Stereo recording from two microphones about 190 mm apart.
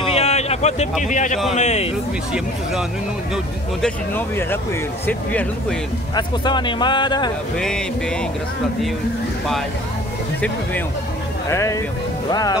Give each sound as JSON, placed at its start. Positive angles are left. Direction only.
{"t": 0.0, "sound": "a sound", "side_deg": 35}
{"t": 1.0, "sound": "a man's voice", "side_deg": 40}
{"t": 3.8, "sound": "speech", "side_deg": 10}
{"t": 6.1, "sound": "speech", "side_deg": 25}
{"t": 7.5, "sound": "speech", "side_deg": 5}
{"t": 11.4, "sound": "speech", "side_deg": 15}